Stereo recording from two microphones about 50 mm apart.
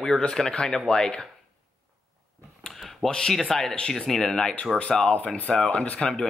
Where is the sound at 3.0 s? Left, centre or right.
Centre.